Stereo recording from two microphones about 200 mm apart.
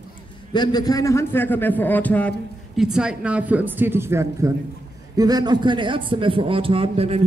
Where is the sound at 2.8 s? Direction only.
5° right (ahead or behind); by 7.2 s 30° right (ahead or behind).